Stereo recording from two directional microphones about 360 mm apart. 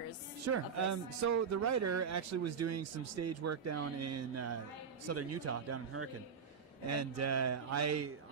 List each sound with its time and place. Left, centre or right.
0.5 s speech: right